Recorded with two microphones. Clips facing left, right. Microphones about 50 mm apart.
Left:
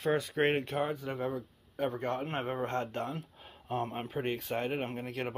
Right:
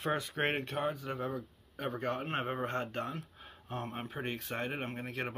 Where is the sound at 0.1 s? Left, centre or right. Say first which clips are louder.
Left 5 dB; centre.